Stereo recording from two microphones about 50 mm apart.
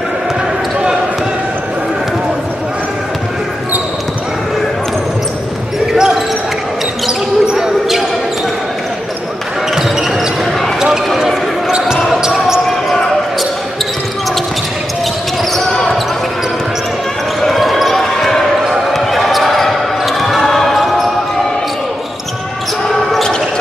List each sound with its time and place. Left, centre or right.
5.9 s basketball bounce: centre
12.1 s basketball bounce: centre
12.6 s basketball bounce: centre
15.5 s basketball bounce: centre
17.4 s basketball bounce: centre
22.8 s basketball bounce: centre